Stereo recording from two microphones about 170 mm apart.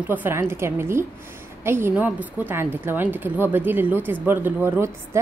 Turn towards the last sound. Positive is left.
turn(degrees=-15)  # may be behind; listen again after turning